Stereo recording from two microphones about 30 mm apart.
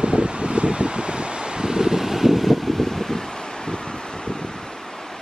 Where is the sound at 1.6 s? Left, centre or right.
Right.